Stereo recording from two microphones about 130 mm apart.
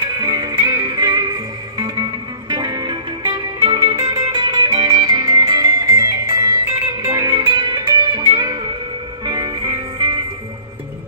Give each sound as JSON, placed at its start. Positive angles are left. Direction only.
{"t": 0.0, "sound": "music", "side_deg": -30}
{"t": 2.5, "sound": "music", "side_deg": -35}